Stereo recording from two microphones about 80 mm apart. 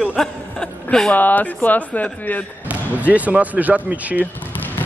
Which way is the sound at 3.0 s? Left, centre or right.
Centre.